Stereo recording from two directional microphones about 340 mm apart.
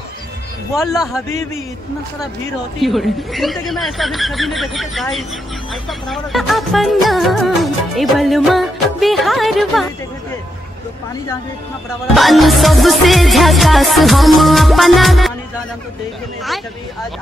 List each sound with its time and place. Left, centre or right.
0.7 s music: centre
2.8 s music: centre
12.2 s music: centre